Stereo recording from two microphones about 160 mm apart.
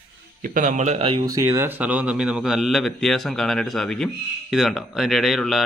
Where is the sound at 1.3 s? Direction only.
15° right (ahead or behind).